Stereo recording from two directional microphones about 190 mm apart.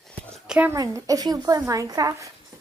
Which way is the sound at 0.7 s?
20° right (ahead or behind).